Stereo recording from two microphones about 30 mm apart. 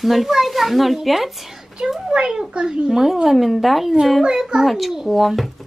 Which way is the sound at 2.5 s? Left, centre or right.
Right.